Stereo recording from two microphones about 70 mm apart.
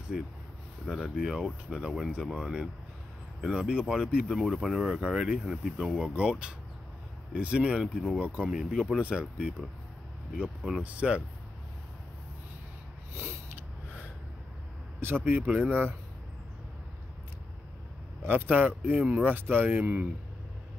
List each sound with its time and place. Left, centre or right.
0.1 s speech: centre
4.3 s speech: centre
7.8 s speech: centre
8.2 s speech: centre
10.8 s speech: centre
13.1 s a sound: right
15.0 s speech: right
18.2 s speech: right